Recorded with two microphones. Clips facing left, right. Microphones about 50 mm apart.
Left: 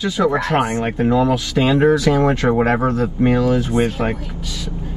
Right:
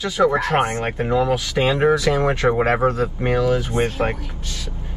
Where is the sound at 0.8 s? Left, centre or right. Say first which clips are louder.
Left 3 dB; centre.